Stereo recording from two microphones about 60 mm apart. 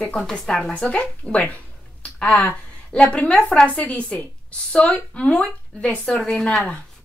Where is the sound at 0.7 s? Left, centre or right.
Left.